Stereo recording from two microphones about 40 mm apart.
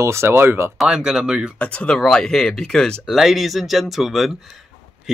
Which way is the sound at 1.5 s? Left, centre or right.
Left.